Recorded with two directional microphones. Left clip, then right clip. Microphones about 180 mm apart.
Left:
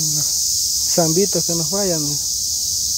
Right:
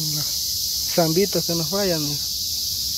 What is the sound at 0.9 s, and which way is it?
Cricket, 15° left (ahead or behind).